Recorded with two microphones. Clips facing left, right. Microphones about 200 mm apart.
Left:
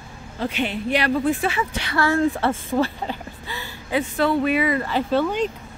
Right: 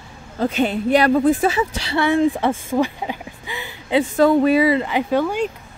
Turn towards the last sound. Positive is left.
turn(degrees=-10)  # may be behind; listen again after turning